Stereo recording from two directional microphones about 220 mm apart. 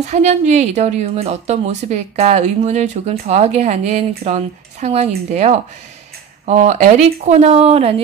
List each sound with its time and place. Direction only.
0.0 s a woman's voice: 30° right (ahead or behind)